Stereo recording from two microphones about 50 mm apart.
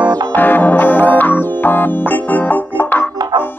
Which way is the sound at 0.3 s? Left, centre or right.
Left.